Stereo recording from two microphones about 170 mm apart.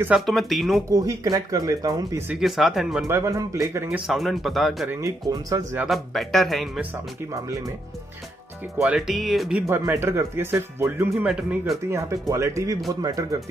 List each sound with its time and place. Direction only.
0.0 s a man's voice: 5° right (ahead or behind)
0.8 s speech: 20° right (ahead or behind)
2.2 s a man's voice: centre (ahead or behind)
3.1 s speech: 15° right (ahead or behind)
4.1 s a man's voice: centre (ahead or behind)
4.8 s speech: 20° right (ahead or behind)
5.9 s a man's voice: centre (ahead or behind)
7.4 s speech: 20° right (ahead or behind)
8.7 s speech: 5° right (ahead or behind)
11.9 s speech: 20° right (ahead or behind)